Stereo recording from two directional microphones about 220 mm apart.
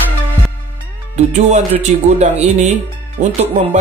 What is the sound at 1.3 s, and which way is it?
Speech, 30° right (ahead or behind).